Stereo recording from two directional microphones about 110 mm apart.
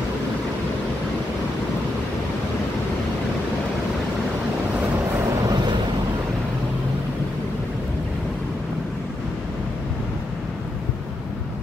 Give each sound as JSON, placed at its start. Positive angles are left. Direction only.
{"t": 5.4, "sound": "vehicle", "side_deg": -35}